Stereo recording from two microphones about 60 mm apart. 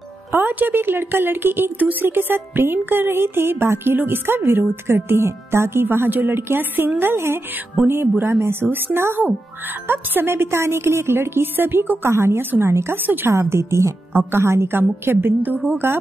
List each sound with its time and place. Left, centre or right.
0.3 s a woman's voice: right
13.3 s a woman's voice: right